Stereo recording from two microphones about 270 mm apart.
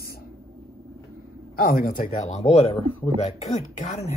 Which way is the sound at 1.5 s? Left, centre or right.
Left.